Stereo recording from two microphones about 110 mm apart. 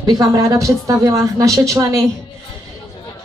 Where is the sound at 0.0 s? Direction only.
40° right (ahead or behind).